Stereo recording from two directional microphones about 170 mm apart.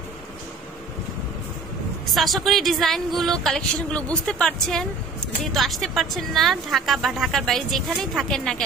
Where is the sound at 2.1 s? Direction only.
Centre (ahead or behind).